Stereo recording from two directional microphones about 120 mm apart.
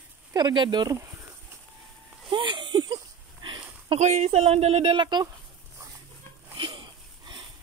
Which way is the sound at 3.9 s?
80° right.